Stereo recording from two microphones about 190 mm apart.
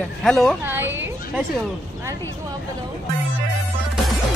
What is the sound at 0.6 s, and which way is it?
Speech, 10° right (ahead or behind).